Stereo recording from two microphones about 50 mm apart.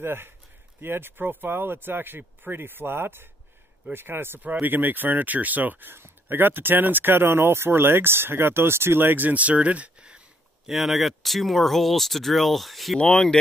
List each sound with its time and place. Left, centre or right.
0.0 s speech: right
4.6 s speech: right
10.7 s speech: centre
13.0 s speech: centre